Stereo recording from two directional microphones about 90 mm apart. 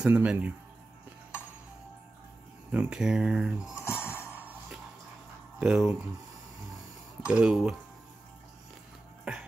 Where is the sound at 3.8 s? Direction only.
25° left (ahead or behind).